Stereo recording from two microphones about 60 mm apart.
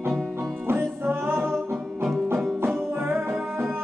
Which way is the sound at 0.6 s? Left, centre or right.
Right.